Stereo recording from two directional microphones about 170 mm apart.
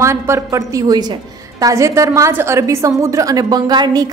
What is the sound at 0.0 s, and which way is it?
A woman's voice, 15° right (ahead or behind).